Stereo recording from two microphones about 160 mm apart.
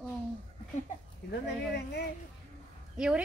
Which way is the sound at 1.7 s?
90° left.